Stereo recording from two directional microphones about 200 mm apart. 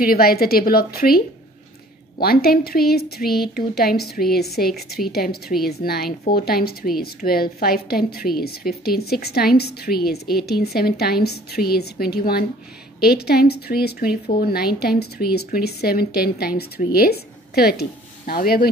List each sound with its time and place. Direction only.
0.0 s a woman's voice: 50° left (ahead or behind)